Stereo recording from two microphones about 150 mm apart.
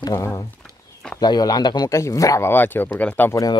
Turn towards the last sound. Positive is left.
turn(degrees=20)  # may be behind; listen again after turning